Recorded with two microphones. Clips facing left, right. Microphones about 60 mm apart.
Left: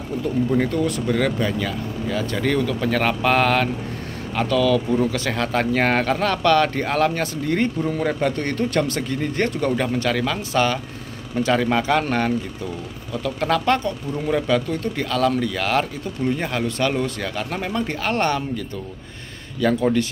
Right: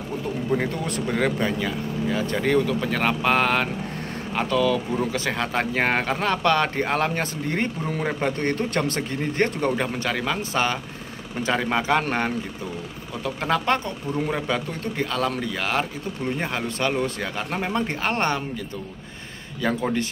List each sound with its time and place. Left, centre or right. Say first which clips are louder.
0.5 s speech: left 2 dB; centre
1.0 s speech: left 2 dB; right
13.1 s speech: left 3 dB; right
19.6 s speech: left 5 dB; centre